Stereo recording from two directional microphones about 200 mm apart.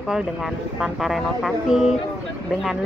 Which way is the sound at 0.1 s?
5° right (ahead or behind).